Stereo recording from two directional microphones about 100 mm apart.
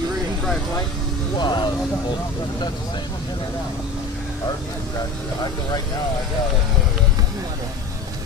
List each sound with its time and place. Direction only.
1.3 s speech: 50° left (ahead or behind)